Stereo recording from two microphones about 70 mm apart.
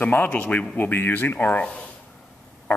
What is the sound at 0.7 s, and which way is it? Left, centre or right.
Speech, left.